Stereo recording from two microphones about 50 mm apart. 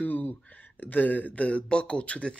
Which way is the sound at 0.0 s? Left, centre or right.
Left.